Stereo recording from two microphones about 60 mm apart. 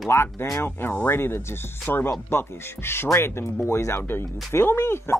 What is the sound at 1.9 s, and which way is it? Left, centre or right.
Speech, left.